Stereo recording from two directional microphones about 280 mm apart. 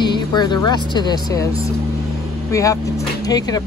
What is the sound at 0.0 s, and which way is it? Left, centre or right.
Speech, centre.